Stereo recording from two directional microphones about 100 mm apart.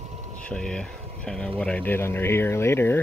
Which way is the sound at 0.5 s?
5° left (ahead or behind).